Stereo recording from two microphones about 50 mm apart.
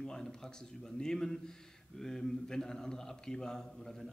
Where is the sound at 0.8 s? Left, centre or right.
Centre.